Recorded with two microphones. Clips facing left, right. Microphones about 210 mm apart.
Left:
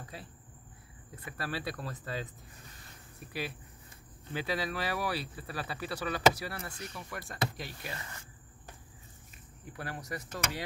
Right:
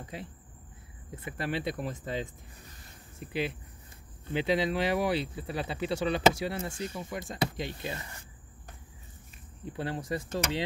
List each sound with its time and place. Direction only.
0.0 s a sound: 20° right (ahead or behind)
1.1 s speech: 25° right (ahead or behind)
9.7 s speech: 25° right (ahead or behind)